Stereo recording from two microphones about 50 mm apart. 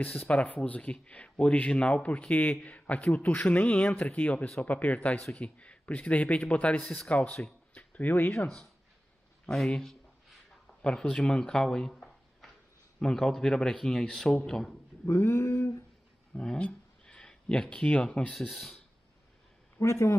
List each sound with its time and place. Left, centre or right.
0.0 s a man's voice: left
7.7 s a sound: left
9.7 s a man's voice: centre
15.0 s a sound: left
16.3 s speech: left
18.5 s speech: centre
19.8 s a man's voice: left